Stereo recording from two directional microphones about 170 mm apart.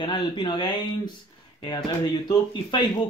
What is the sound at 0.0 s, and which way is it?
Speech, 25° left (ahead or behind).